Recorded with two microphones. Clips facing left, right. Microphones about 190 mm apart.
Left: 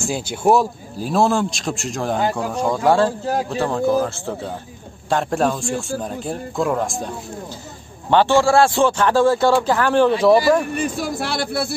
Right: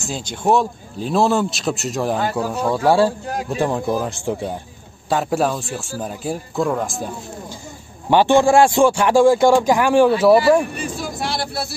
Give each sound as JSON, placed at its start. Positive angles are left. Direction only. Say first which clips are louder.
{"t": 0.1, "sound": "speech", "louder": "left 1 dB", "side_deg": 10}
{"t": 5.1, "sound": "speech", "louder": "even", "side_deg": -5}
{"t": 8.1, "sound": "speech", "louder": "right 1 dB", "side_deg": -15}
{"t": 10.7, "sound": "speech", "louder": "left 4 dB", "side_deg": 55}